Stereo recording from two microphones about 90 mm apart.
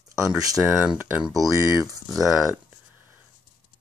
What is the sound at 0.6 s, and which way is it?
Speech, 15° right (ahead or behind).